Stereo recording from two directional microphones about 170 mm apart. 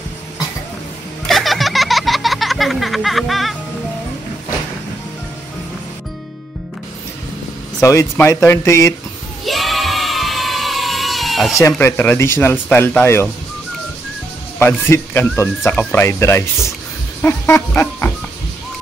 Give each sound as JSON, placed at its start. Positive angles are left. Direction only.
{"t": 1.3, "sound": "a sound", "side_deg": 0}
{"t": 7.8, "sound": "speech", "side_deg": 15}
{"t": 9.5, "sound": "music", "side_deg": 0}
{"t": 11.6, "sound": "speech", "side_deg": 15}
{"t": 14.6, "sound": "speech", "side_deg": 15}
{"t": 17.2, "sound": "a sound", "side_deg": 15}